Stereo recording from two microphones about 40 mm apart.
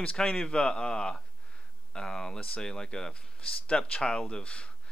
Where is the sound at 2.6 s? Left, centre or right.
Centre.